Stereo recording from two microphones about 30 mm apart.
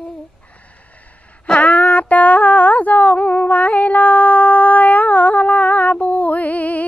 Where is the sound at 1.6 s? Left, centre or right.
Left.